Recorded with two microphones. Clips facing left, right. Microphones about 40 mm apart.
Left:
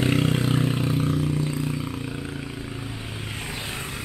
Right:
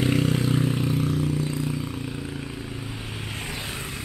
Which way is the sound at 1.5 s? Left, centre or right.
Centre.